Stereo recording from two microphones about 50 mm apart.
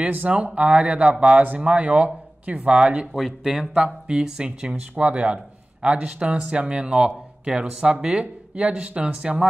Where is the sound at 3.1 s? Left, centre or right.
Centre.